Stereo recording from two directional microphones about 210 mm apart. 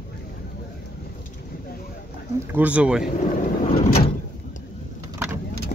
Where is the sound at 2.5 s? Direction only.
5° right (ahead or behind).